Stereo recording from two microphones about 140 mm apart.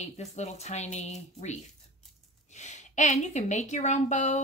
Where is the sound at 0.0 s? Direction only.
55° left (ahead or behind).